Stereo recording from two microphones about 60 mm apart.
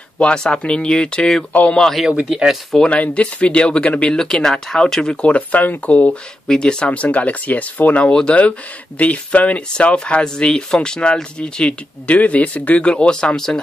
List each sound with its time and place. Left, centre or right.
0.2 s speech: centre
1.8 s speech: centre
2.2 s speech: centre
2.8 s speech: centre
4.1 s speech: centre
6.4 s speech: centre
8.1 s speech: centre
8.4 s speech: left